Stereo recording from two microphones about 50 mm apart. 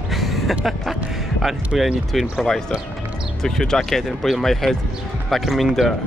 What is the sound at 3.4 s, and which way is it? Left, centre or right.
Speech, centre.